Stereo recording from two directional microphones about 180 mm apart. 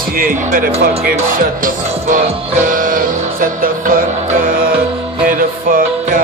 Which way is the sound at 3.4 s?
50° right (ahead or behind).